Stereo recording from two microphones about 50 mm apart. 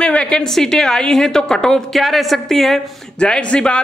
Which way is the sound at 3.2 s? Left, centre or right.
Centre.